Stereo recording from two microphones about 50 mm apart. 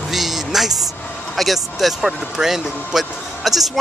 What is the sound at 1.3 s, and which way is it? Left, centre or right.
Speech, centre.